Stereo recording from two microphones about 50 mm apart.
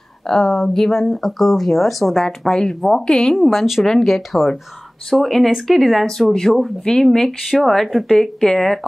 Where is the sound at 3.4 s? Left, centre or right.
Centre.